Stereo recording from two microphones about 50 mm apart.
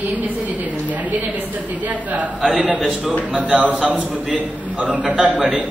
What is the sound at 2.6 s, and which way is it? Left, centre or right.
Speech, centre.